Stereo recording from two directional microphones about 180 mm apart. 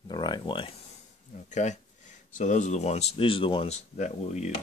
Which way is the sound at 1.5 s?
40° left (ahead or behind).